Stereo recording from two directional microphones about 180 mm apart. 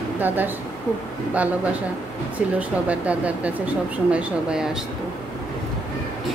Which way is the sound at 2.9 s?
5° right (ahead or behind).